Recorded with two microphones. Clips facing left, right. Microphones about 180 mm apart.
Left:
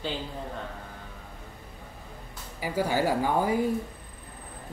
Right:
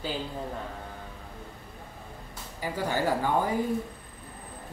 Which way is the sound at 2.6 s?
10° left (ahead or behind).